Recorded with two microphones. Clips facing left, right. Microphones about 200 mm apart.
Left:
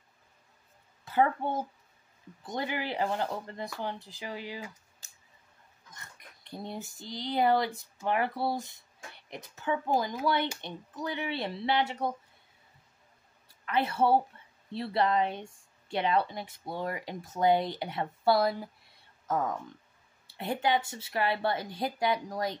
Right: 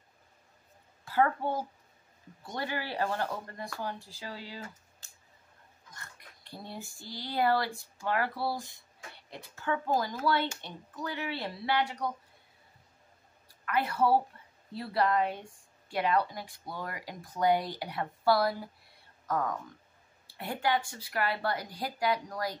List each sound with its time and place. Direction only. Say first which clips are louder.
1.0 s a woman's voice: left 1 dB; 20° left (ahead or behind)
5.9 s a woman's voice: even; 20° left (ahead or behind)
13.7 s a woman's voice: left 1 dB; 25° left (ahead or behind)